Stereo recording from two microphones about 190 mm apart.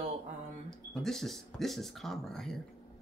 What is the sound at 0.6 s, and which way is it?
Speech, centre (ahead or behind).